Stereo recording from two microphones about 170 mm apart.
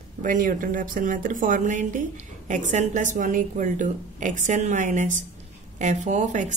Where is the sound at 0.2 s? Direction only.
50° right (ahead or behind).